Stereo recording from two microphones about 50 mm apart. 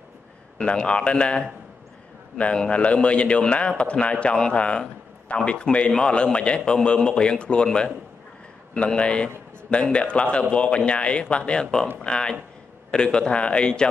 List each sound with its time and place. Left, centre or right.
0.6 s a man's voice: centre
2.5 s a man's voice: left
11.6 s a man's voice: centre